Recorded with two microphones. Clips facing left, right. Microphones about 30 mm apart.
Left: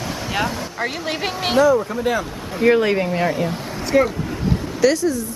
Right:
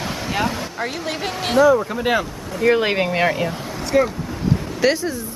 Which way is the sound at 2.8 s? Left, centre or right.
Right.